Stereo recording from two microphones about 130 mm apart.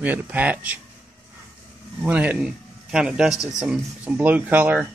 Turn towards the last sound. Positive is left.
turn(degrees=-10)  # may be behind; listen again after turning